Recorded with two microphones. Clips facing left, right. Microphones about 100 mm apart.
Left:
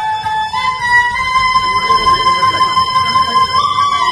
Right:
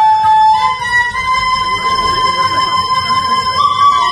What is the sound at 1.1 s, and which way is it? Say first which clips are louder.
Music: left 1 dB; 20° left (ahead or behind).